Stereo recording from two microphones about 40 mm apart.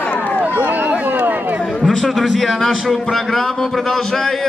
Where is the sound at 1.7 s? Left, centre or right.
Centre.